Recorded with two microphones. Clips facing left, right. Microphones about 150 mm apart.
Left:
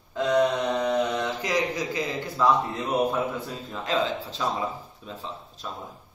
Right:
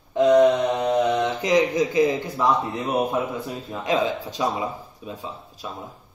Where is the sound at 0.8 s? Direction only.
20° right (ahead or behind).